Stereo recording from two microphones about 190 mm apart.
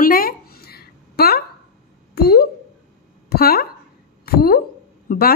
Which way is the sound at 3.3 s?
55° left (ahead or behind).